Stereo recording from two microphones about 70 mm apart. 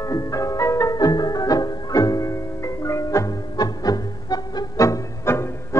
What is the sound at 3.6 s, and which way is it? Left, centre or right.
Music, left.